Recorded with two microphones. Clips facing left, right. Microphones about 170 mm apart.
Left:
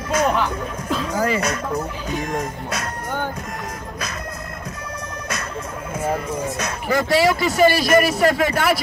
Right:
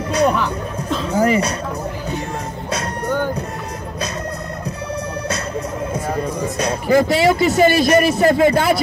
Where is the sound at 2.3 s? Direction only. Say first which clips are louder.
Even; 30° right (ahead or behind).